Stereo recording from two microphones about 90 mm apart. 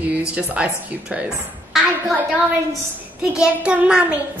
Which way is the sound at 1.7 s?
Centre (ahead or behind).